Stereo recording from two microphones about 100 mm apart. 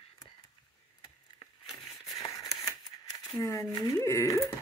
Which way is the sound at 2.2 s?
35° left (ahead or behind).